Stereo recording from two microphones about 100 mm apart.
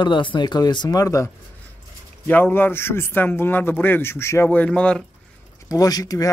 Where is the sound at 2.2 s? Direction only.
20° left (ahead or behind).